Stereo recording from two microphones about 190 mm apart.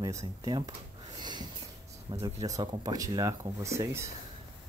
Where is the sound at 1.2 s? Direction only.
20° right (ahead or behind).